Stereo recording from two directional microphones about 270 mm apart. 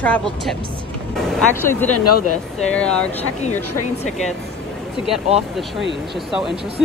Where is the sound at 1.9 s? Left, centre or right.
Left.